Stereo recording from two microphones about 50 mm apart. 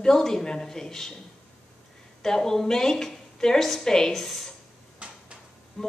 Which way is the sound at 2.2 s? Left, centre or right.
Centre.